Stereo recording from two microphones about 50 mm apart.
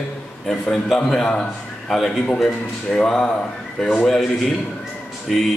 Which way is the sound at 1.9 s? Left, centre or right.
Centre.